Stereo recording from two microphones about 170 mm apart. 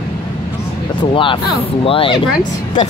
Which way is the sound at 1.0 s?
30° left (ahead or behind).